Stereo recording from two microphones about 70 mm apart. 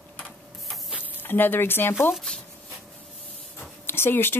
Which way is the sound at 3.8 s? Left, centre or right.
Left.